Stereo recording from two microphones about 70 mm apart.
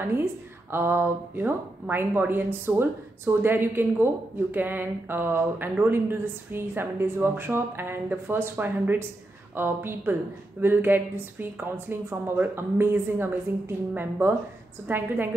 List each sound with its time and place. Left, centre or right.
0.0 s speech: right